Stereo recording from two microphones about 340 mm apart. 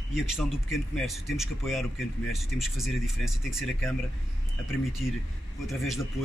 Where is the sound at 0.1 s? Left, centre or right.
Centre.